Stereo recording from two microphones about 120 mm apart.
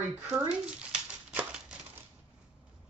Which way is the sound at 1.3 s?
10° right (ahead or behind).